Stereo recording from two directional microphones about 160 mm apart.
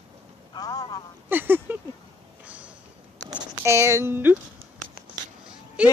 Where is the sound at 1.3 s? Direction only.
10° right (ahead or behind).